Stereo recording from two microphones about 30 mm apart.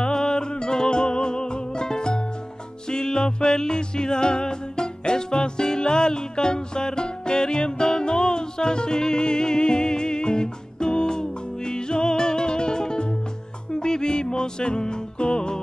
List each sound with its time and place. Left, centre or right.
0.0 s music: left